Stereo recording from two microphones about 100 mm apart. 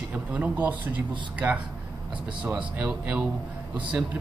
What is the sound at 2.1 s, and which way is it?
Speech, 10° right (ahead or behind).